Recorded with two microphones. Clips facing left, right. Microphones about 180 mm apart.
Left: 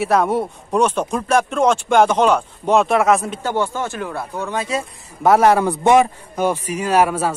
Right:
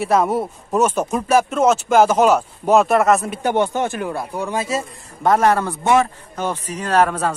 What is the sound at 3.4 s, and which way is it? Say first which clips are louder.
A man's voice: right 3 dB; 20° right (ahead or behind).